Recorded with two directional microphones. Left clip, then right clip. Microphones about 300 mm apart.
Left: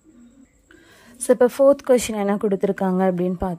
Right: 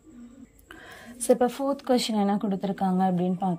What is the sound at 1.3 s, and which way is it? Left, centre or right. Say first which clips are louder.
A woman's voice: left 11 dB; left.